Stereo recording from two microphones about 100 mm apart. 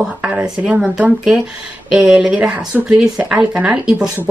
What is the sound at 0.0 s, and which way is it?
Speech, 15° right (ahead or behind).